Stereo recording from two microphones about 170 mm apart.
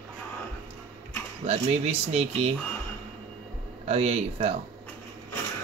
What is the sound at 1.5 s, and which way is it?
Speech, 35° right (ahead or behind).